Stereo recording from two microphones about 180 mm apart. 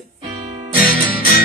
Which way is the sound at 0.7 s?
55° left (ahead or behind).